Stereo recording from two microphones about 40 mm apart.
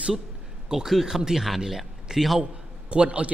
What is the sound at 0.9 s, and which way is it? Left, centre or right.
A man's voice, centre.